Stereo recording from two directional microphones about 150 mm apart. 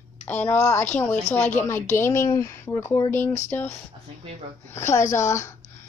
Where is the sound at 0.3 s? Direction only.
15° left (ahead or behind).